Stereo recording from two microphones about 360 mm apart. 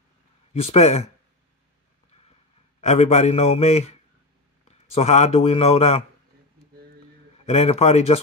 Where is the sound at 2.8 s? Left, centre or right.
Centre.